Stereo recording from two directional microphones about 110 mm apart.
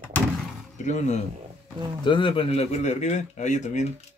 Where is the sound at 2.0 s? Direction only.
50° left (ahead or behind); by 3.8 s 90° left.